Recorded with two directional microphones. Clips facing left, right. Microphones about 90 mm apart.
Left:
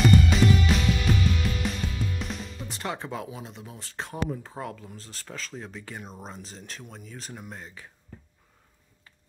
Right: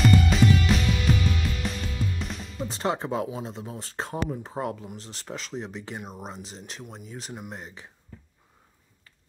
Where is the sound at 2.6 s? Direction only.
30° right (ahead or behind).